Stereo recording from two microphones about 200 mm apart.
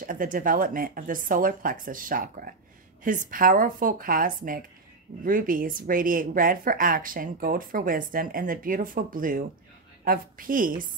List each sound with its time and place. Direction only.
0.0 s a woman's voice: 45° right (ahead or behind)